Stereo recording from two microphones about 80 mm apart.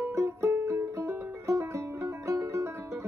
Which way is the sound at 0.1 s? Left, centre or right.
Right.